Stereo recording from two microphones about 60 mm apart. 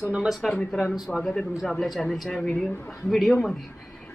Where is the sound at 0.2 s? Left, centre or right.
Centre.